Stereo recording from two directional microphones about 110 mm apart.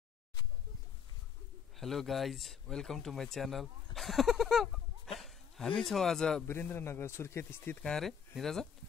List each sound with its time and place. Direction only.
1.8 s speech: centre (ahead or behind)
6.4 s speech: 20° left (ahead or behind)
8.4 s speech: 5° left (ahead or behind)